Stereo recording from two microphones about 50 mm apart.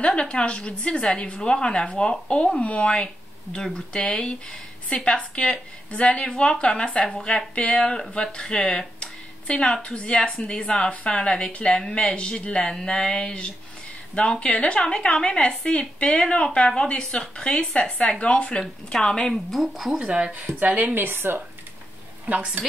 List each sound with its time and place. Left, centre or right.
0.0 s speech: left
18.6 s speech: centre
19.3 s speech: centre
20.0 s speech: right
20.4 s a woman's voice: right
20.9 s a woman's voice: right
22.2 s speech: right